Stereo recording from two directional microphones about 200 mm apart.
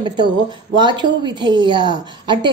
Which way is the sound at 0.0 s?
20° right (ahead or behind).